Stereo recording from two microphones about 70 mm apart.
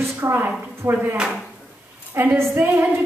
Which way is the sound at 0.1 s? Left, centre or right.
Right.